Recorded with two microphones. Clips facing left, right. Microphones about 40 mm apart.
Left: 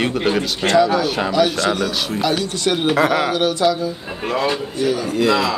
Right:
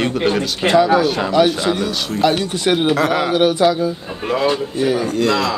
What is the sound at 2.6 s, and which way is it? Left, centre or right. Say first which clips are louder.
Speech: right 4 dB; centre.